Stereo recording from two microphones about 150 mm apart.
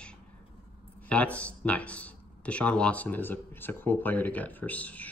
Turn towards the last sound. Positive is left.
turn(degrees=10)  # may be behind; listen again after turning